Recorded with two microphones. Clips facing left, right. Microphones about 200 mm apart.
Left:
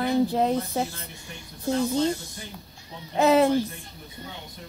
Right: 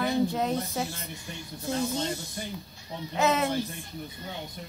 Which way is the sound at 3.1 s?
35° left (ahead or behind).